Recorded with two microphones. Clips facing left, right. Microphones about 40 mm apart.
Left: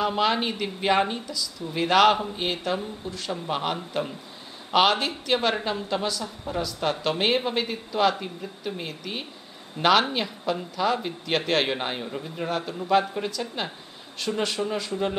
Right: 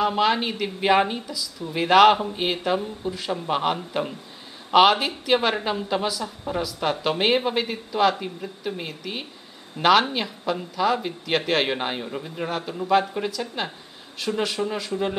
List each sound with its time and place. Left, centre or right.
0.0 s a woman's voice: centre